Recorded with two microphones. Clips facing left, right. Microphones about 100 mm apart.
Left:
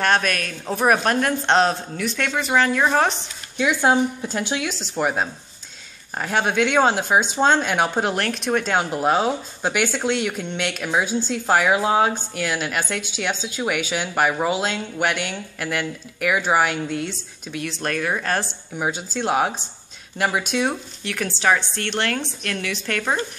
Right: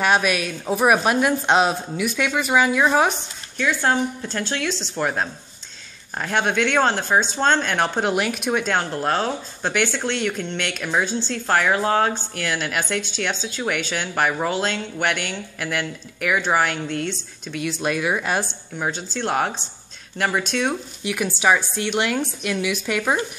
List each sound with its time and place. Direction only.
0.0 s a woman's voice: 10° right (ahead or behind)
3.5 s speech: 15° left (ahead or behind); by 8.8 s centre (ahead or behind)
8.9 s speech: 10° left (ahead or behind); by 18.5 s 5° right (ahead or behind)
18.8 s speech: 10° left (ahead or behind)
21.0 s a woman's voice: 10° right (ahead or behind)